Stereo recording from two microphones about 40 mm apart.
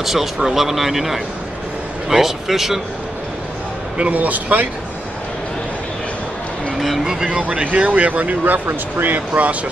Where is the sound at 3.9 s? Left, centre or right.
Right.